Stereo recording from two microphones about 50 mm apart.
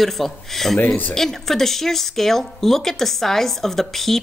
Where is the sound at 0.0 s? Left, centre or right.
Centre.